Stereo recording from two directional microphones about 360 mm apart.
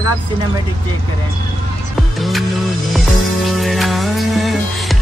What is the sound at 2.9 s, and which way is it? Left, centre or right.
Music, centre.